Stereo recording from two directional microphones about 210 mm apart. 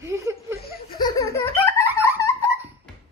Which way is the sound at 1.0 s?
15° left (ahead or behind).